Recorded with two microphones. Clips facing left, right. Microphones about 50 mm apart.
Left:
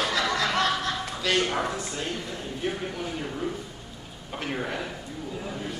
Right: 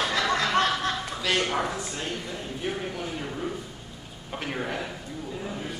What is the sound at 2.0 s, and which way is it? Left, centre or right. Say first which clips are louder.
A man's voice: left 1 dB; centre.